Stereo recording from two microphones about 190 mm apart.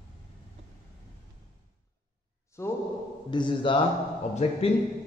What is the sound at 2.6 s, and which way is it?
Speech, 15° left (ahead or behind).